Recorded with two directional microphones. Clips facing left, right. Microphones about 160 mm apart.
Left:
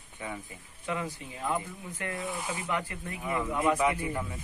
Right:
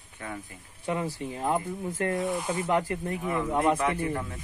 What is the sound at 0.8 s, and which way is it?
Speech, 35° right (ahead or behind).